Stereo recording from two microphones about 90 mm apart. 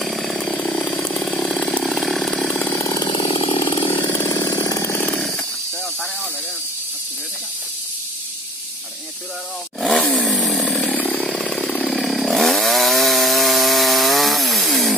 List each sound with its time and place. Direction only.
0.0 s chainsaw: centre (ahead or behind)
2.5 s chainsaw: 30° left (ahead or behind)
3.1 s chainsaw: 75° left (ahead or behind)
3.6 s chainsaw: 65° left (ahead or behind)
4.3 s engine: 45° left (ahead or behind)
9.8 s chainsaw: 5° left (ahead or behind)